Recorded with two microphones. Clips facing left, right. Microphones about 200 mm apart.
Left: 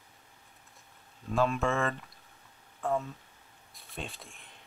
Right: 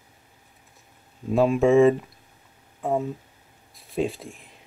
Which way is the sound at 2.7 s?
15° right (ahead or behind).